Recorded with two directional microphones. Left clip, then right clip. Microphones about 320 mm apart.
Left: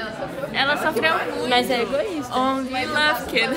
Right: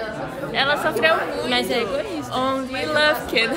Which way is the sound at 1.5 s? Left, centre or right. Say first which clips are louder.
Left 3 dB; centre.